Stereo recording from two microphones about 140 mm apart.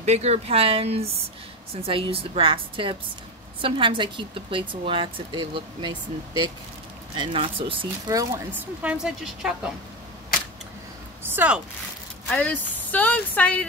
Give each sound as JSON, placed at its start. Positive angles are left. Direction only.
{"t": 0.0, "sound": "speech", "side_deg": -50}
{"t": 8.1, "sound": "speech", "side_deg": -20}
{"t": 8.8, "sound": "a woman's voice", "side_deg": -5}
{"t": 11.2, "sound": "speech", "side_deg": -10}
{"t": 12.3, "sound": "speech", "side_deg": 10}